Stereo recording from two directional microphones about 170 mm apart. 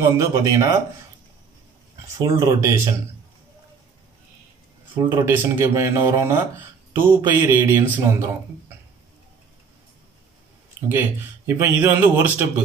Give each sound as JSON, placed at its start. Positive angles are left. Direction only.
{"t": 0.0, "sound": "speech", "side_deg": -20}
{"t": 2.1, "sound": "speech", "side_deg": -20}
{"t": 5.1, "sound": "a man's voice", "side_deg": -15}
{"t": 10.9, "sound": "a man's voice", "side_deg": -10}